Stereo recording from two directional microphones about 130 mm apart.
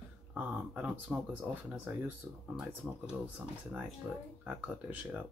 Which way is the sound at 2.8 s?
5° right (ahead or behind).